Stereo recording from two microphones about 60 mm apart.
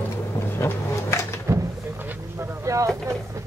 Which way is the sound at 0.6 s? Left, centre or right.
Left.